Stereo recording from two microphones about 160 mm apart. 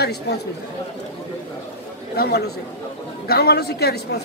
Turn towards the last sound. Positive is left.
turn(degrees=85)